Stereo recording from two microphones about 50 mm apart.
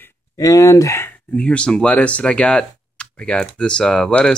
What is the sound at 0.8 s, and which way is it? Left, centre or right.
Speech, left.